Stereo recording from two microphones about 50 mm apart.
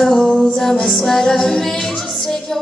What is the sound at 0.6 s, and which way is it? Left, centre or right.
Music, centre.